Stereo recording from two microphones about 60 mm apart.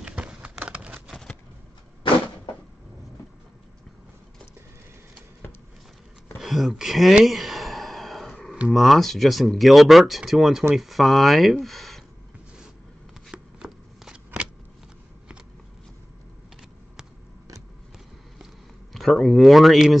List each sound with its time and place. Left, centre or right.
0.0 s a sound: centre
6.3 s speech: centre
7.2 s a sound: centre
8.7 s speech: centre
13.3 s shuffling cards: centre
18.9 s speech: centre